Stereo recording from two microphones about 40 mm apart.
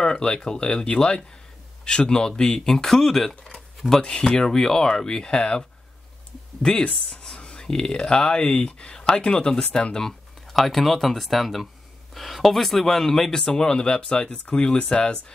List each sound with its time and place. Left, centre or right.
0.0 s speech: centre
3.5 s a sound: centre
4.0 s speech: left
6.9 s speech: centre; by 9.9 s left
10.5 s speech: centre; by 15.3 s left